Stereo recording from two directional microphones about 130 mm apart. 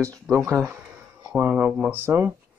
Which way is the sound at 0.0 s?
20° right (ahead or behind).